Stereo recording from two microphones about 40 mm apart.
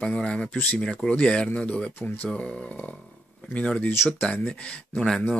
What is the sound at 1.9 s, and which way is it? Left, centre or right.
Speech, left.